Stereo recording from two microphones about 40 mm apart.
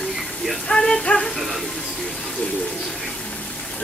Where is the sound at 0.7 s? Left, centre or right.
Centre.